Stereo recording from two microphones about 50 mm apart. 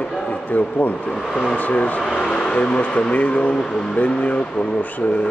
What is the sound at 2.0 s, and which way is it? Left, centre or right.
Speech, centre.